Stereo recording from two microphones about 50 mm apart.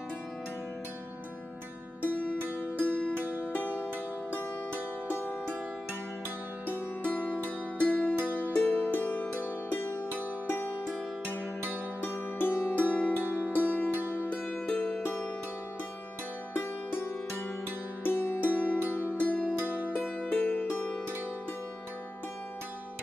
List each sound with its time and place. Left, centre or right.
2.8 s music: left
4.3 s music: left
6.7 s music: left
12.0 s music: left
12.8 s music: left
13.2 s music: right
13.5 s music: left
13.8 s music: right
14.3 s music: left
16.5 s music: left
18.9 s zither: left
19.6 s music: right
20.2 s music: left